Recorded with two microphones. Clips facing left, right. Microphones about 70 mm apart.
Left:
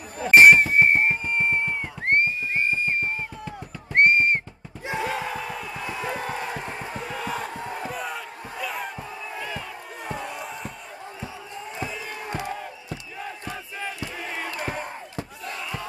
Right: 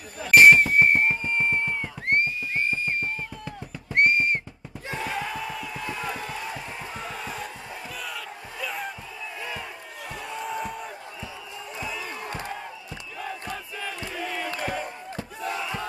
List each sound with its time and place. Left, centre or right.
0.2 s music: left
2.0 s music: left
4.8 s a sound: centre
5.1 s battle cry: left
6.0 s music: left
7.2 s crowd: left
8.5 s a sound: centre
10.0 s crowd: left
14.6 s crowd: left
15.5 s crowd: centre